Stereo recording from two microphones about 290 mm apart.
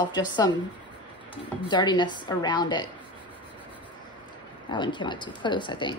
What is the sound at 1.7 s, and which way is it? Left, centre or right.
A woman's voice, centre.